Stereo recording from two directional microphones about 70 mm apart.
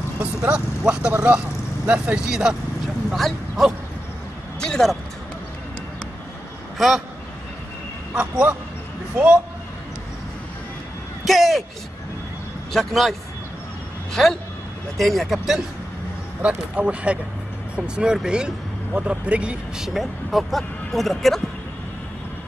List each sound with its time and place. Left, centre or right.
0.2 s speech: centre
3.1 s speech: centre
4.6 s vehicle: centre
6.8 s speech: centre
8.1 s a man's voice: centre
11.2 s speech: centre
12.7 s speech: centre
14.2 s speech: centre
16.4 s speech: centre
19.9 s speech: centre